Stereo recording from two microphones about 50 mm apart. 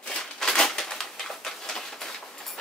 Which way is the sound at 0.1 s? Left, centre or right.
Centre.